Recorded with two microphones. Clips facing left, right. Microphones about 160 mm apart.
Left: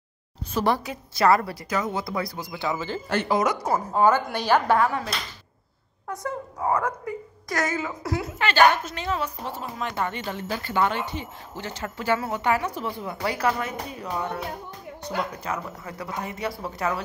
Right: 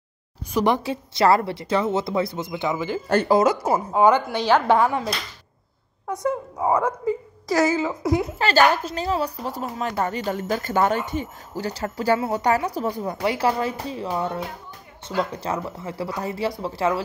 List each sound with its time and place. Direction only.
0.5 s a woman's voice: 15° right (ahead or behind)
3.1 s a woman's voice: 40° right (ahead or behind)
3.9 s a woman's voice: 15° right (ahead or behind)
4.3 s a woman's voice: 10° left (ahead or behind)
4.8 s a woman's voice: 25° right (ahead or behind)
6.2 s a woman's voice: 20° right (ahead or behind)
8.4 s a woman's voice: 35° right (ahead or behind)
13.2 s a woman's voice: 25° right (ahead or behind)